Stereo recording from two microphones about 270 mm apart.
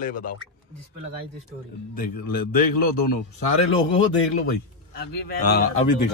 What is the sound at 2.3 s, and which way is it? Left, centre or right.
Speech, left.